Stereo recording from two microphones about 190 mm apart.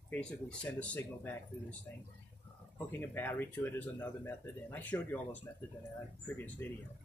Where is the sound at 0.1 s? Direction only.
5° left (ahead or behind).